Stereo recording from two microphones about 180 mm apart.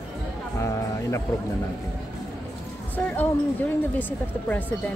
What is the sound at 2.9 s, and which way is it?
Speech, 10° left (ahead or behind).